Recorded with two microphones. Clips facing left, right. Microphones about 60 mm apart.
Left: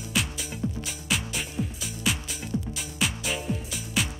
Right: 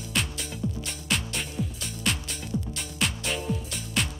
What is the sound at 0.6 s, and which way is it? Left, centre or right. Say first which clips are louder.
Music: left 1 dB; left.